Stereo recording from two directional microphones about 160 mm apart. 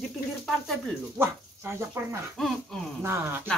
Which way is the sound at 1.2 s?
15° right (ahead or behind).